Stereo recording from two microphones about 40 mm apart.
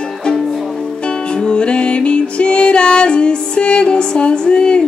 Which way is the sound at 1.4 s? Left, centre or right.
Left.